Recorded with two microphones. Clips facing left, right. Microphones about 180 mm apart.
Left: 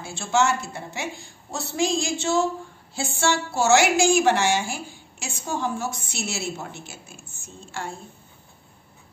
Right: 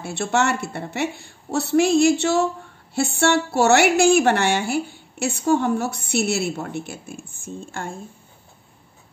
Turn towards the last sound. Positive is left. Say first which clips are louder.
# right 3 dB
turn(degrees=-50)  # may be behind; listen again after turning